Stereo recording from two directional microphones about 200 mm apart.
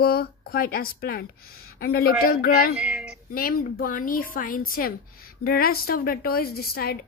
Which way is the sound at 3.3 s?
45° left (ahead or behind).